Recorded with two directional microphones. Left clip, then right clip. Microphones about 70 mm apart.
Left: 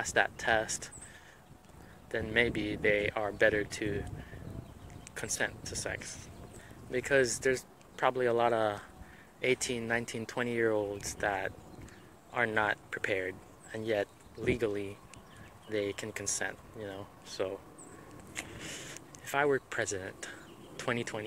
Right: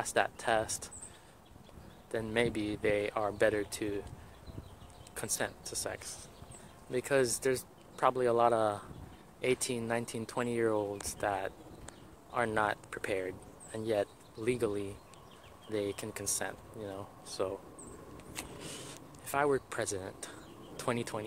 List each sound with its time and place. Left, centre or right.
0.0 s speech: centre
2.0 s speech: centre
5.2 s speech: centre
11.2 s speech: centre
12.5 s speech: centre
18.3 s vehicle: centre
18.7 s a sound: centre
19.7 s speech: centre
20.7 s a sound: right